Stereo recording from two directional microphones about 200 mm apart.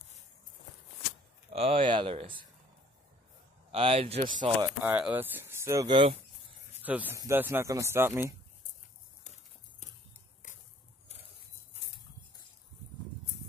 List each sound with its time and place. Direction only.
1.5 s speech: 30° right (ahead or behind)
3.7 s speech: 30° right (ahead or behind)
4.6 s speech: 10° right (ahead or behind)
6.8 s speech: 10° right (ahead or behind)
9.2 s horse: 35° left (ahead or behind)